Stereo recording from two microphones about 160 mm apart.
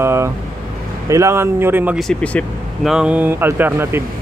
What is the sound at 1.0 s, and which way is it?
Speech, 20° right (ahead or behind).